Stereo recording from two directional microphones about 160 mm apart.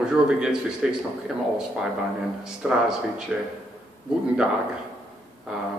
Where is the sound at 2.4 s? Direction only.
5° right (ahead or behind).